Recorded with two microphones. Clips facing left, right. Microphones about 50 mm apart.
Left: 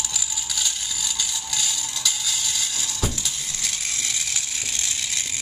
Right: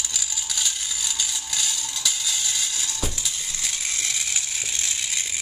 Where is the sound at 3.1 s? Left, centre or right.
Centre.